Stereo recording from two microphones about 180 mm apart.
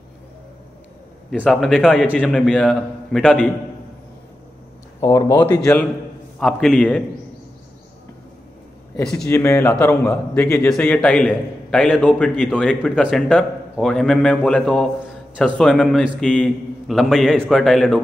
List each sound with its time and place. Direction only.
1.4 s a man's voice: centre (ahead or behind)
5.0 s speech: 20° left (ahead or behind)
5.5 s a man's voice: 10° left (ahead or behind)
8.9 s a man's voice: 5° left (ahead or behind)
9.3 s a man's voice: 15° left (ahead or behind)